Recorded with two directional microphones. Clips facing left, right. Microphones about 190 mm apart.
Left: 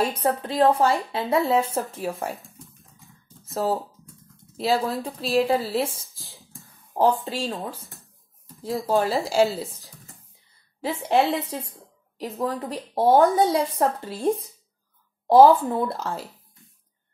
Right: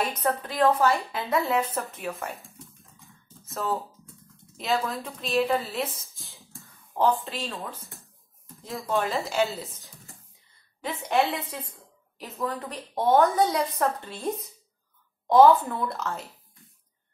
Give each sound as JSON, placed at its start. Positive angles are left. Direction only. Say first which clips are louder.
{"t": 0.0, "sound": "speech", "louder": "left 4 dB", "side_deg": 30}
{"t": 3.0, "sound": "a sound", "louder": "left 1 dB", "side_deg": 0}
{"t": 4.6, "sound": "speech", "louder": "left 4 dB", "side_deg": 30}
{"t": 6.1, "sound": "whispering", "louder": "left 1 dB", "side_deg": 0}
{"t": 7.0, "sound": "speech", "louder": "left 3 dB", "side_deg": 35}
{"t": 8.8, "sound": "speech", "louder": "left 4 dB", "side_deg": 35}
{"t": 9.8, "sound": "a sound", "louder": "left 1 dB", "side_deg": 0}
{"t": 10.8, "sound": "speech", "louder": "left 4 dB", "side_deg": 30}